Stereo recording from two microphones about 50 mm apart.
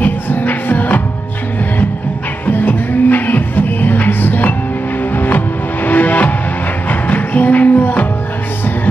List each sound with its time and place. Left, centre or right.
0.0 s music: left
2.4 s music: left